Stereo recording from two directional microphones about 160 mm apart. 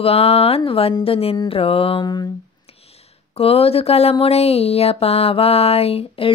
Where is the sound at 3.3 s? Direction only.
35° left (ahead or behind).